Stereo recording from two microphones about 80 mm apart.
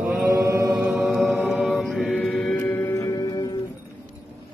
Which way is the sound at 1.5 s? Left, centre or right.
Centre.